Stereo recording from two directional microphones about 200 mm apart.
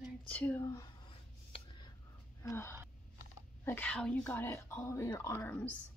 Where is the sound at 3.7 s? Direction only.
10° left (ahead or behind).